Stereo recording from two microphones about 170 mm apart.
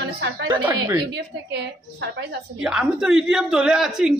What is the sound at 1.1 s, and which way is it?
A woman's voice, 80° right.